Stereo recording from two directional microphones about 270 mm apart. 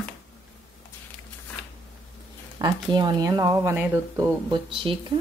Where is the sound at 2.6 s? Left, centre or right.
Centre.